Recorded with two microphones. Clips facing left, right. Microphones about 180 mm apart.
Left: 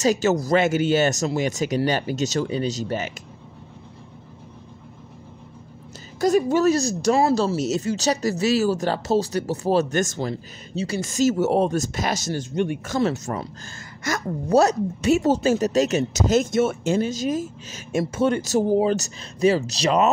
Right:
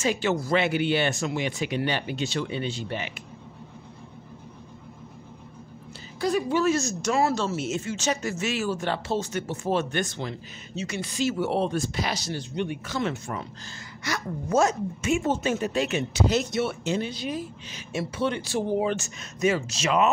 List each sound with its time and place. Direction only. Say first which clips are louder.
0.0 s speech: left 5 dB; 40° left (ahead or behind)
6.2 s speech: left 5 dB; 45° left (ahead or behind)